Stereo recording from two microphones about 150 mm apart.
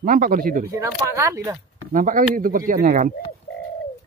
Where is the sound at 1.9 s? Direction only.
65° right (ahead or behind).